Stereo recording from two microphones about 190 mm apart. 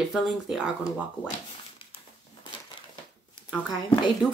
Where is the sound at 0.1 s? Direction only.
Centre (ahead or behind).